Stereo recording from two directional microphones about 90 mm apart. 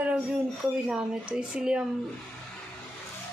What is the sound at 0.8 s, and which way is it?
Speech, 10° right (ahead or behind).